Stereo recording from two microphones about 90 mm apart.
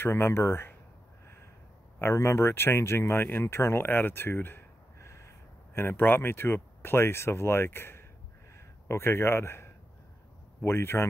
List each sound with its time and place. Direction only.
0.0 s speech: 25° left (ahead or behind)
2.0 s speech: 30° left (ahead or behind)
5.8 s a man's voice: 20° left (ahead or behind)